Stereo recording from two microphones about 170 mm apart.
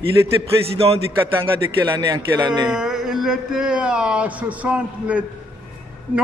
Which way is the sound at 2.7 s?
5° right (ahead or behind).